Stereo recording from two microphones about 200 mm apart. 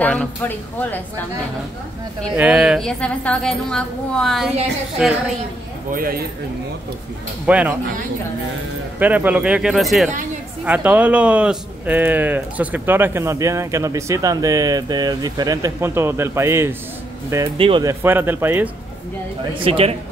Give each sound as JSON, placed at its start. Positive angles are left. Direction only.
{"t": 0.0, "sound": "speech", "side_deg": 5}
{"t": 2.3, "sound": "a woman's voice", "side_deg": -5}
{"t": 5.9, "sound": "speech", "side_deg": -45}
{"t": 7.4, "sound": "speech", "side_deg": -5}
{"t": 9.0, "sound": "a woman's voice", "side_deg": -10}
{"t": 17.6, "sound": "speech", "side_deg": -25}
{"t": 17.8, "sound": "speech", "side_deg": -10}
{"t": 19.6, "sound": "speech", "side_deg": -30}